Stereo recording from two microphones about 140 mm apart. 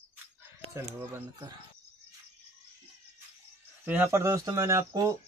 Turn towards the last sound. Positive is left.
turn(degrees=-20)  # may be behind; listen again after turning